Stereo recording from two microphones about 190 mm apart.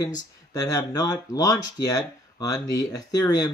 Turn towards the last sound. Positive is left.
turn(degrees=20)  # may be behind; listen again after turning